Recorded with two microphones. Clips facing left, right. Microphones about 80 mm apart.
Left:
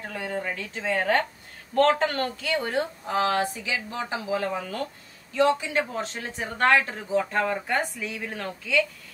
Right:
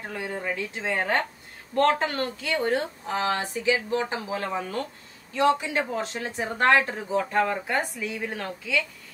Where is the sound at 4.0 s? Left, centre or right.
Right.